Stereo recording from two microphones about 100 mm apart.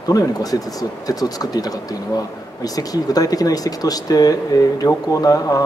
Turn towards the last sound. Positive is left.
turn(degrees=35)  # may be behind; listen again after turning